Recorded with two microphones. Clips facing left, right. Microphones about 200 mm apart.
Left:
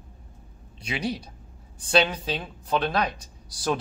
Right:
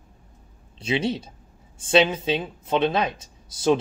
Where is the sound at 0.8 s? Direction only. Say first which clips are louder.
Right 5 dB; 25° right (ahead or behind).